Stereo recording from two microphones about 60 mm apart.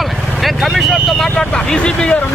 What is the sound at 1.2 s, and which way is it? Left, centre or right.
Speech, centre.